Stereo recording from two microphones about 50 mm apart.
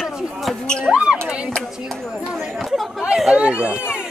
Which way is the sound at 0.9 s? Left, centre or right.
Centre.